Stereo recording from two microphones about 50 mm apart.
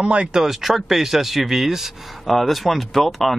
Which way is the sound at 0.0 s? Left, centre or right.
Right.